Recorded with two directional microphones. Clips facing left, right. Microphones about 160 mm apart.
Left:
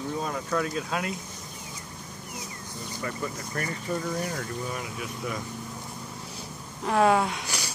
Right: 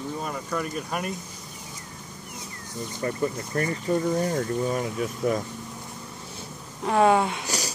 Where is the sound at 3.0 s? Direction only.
35° right (ahead or behind).